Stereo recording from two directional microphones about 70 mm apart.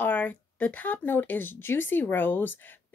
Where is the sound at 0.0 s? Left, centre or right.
Left.